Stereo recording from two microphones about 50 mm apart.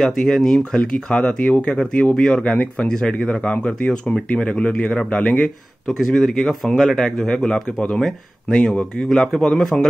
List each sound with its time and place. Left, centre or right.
0.0 s speech: centre
0.7 s speech: left
6.1 s speech: centre